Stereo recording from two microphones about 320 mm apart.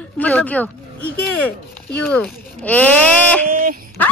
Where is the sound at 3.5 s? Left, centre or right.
Right.